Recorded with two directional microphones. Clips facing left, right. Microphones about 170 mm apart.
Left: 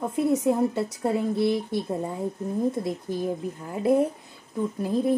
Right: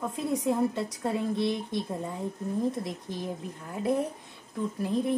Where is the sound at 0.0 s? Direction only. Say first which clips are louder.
Left 6 dB; 25° left (ahead or behind).